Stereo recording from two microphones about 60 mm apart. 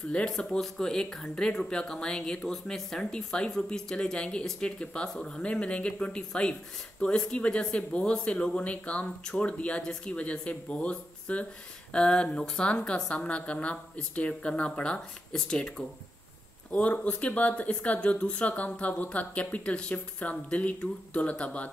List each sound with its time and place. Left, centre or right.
0.1 s speech: centre
16.7 s speech: left